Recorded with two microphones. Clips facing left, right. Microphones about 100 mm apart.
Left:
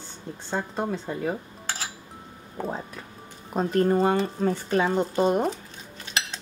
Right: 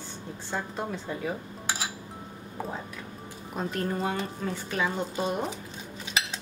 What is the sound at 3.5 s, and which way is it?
Speech, 35° left (ahead or behind).